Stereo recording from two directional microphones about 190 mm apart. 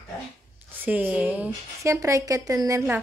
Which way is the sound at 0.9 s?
10° right (ahead or behind).